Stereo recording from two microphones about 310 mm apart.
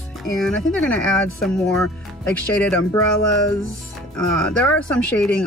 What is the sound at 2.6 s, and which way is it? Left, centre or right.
Speech, centre.